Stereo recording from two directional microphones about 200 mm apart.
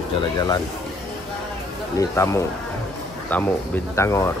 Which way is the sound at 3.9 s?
15° left (ahead or behind).